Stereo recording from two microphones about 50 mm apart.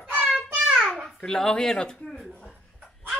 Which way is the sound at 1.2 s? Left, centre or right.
Centre.